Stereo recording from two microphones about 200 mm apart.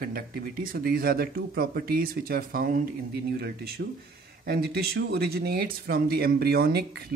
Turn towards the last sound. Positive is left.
turn(degrees=-50)  # may be behind; listen again after turning